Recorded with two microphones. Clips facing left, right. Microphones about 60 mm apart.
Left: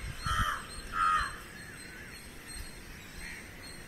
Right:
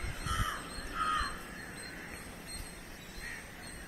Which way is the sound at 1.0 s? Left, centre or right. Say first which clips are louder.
Left 6 dB; left.